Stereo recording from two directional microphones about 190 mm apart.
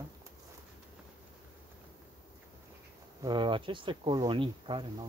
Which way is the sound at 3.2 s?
25° right (ahead or behind).